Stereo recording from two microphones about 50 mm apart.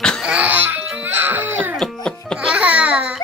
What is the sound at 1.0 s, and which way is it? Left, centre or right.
Music, right.